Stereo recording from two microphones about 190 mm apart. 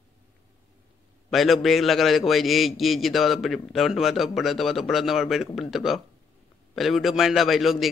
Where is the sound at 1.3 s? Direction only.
Centre (ahead or behind).